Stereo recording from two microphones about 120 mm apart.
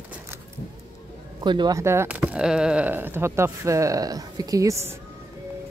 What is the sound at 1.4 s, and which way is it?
Speech, 40° right (ahead or behind).